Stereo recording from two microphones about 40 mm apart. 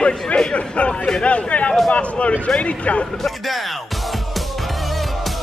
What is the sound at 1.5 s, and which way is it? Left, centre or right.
Speech, left.